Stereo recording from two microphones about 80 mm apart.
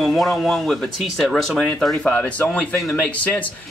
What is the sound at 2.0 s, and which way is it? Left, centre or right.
A man's voice, centre.